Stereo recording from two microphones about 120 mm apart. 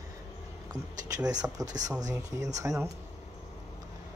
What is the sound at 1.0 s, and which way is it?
Speech, 30° right (ahead or behind).